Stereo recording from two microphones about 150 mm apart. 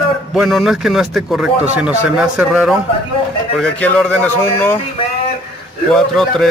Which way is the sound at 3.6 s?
5° left (ahead or behind).